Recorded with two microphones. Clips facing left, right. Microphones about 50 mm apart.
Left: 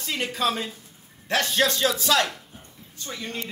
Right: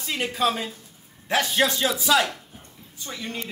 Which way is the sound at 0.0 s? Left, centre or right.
Centre.